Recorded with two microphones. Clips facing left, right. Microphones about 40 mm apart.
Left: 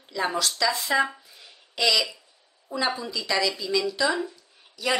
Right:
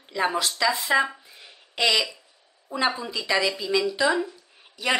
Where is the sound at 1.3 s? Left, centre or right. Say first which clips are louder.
Right 2 dB; right.